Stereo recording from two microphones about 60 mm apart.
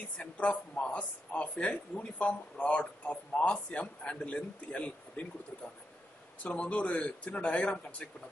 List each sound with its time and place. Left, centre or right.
0.2 s speech: left
6.4 s speech: left